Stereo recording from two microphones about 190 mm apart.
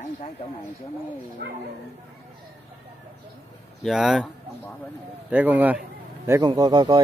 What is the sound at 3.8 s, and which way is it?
Speech, centre (ahead or behind).